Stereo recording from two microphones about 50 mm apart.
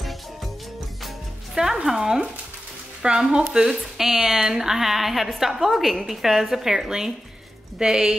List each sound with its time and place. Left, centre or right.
1.0 s music: centre
3.0 s a woman's voice: centre